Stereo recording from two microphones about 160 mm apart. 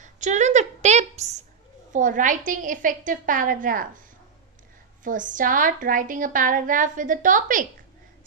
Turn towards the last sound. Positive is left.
turn(degrees=-55)  # may be behind; listen again after turning